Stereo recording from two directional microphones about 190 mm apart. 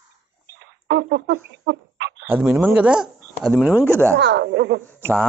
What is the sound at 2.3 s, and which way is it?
Speech, 5° right (ahead or behind).